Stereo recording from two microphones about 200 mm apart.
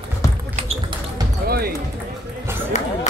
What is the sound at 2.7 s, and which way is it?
Music, 35° left (ahead or behind).